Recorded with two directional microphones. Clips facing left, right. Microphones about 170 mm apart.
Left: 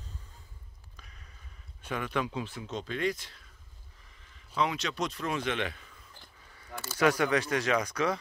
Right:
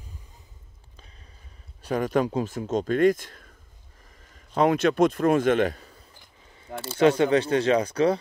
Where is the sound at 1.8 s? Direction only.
40° right (ahead or behind).